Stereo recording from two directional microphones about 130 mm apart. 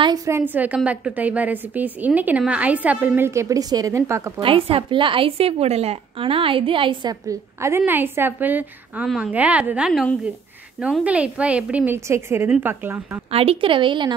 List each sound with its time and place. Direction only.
0.0 s a woman's voice: 30° right (ahead or behind)
0.4 s a woman's voice: 15° right (ahead or behind)
4.4 s a woman's voice: 45° right (ahead or behind); by 13.2 s 15° right (ahead or behind)
13.3 s a woman's voice: 45° right (ahead or behind)